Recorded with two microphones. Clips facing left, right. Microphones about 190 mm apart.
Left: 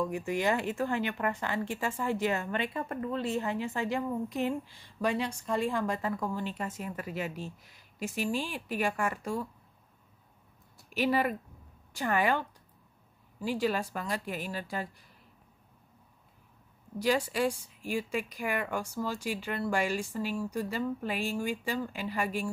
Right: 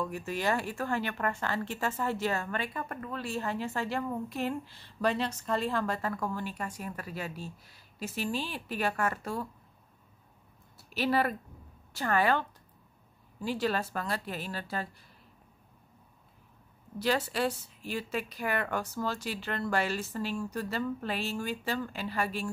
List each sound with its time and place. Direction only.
0.0 s speech: 15° left (ahead or behind)
10.8 s speech: 15° left (ahead or behind)
17.0 s speech: 10° left (ahead or behind)